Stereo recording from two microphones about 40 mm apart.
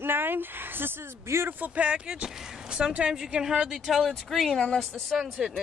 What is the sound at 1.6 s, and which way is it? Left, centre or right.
A woman's voice, right.